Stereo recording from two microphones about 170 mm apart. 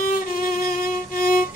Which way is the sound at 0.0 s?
55° left (ahead or behind).